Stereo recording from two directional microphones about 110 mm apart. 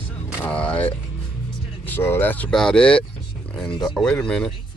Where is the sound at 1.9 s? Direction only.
20° left (ahead or behind).